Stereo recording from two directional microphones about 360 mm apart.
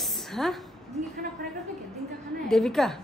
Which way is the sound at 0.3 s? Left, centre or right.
Centre.